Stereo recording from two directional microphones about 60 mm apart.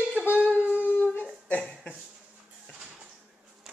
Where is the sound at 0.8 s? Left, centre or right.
Left.